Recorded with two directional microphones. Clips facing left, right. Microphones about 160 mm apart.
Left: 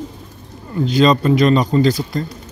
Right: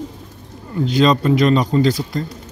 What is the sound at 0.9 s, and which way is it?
A man's voice, 40° left (ahead or behind).